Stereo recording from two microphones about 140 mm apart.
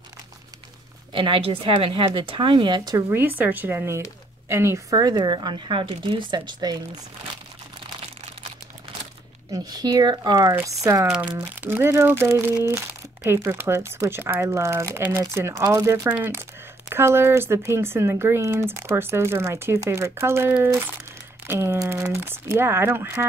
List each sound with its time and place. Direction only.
1.1 s speech: 35° right (ahead or behind)
3.1 s speech: 15° right (ahead or behind); by 6.8 s 30° right (ahead or behind)
9.5 s speech: 25° right (ahead or behind)